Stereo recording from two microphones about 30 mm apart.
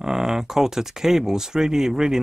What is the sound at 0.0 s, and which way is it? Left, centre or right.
Speech, centre.